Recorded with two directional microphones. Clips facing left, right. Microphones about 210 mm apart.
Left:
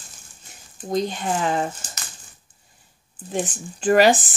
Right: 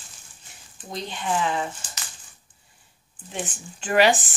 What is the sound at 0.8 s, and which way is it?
Speech, 45° left (ahead or behind).